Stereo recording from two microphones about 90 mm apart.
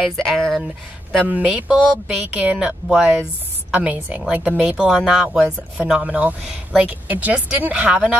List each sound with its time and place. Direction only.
0.1 s speech: centre (ahead or behind)
1.2 s speech: 15° right (ahead or behind)